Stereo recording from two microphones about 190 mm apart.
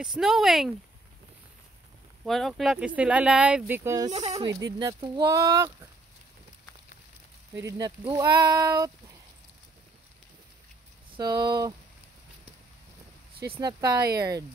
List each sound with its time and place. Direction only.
0.2 s speech: centre (ahead or behind)
2.2 s speech: centre (ahead or behind); by 4.1 s 15° right (ahead or behind)
4.1 s speech: 30° right (ahead or behind)
4.7 s speech: 20° right (ahead or behind)
7.5 s speech: 15° right (ahead or behind)
11.1 s speech: 20° right (ahead or behind)
13.6 s speech: 15° right (ahead or behind)